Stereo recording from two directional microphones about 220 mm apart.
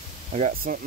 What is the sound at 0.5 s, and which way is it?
Speech, 40° right (ahead or behind).